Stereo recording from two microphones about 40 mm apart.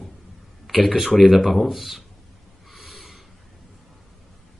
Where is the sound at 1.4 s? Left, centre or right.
Centre.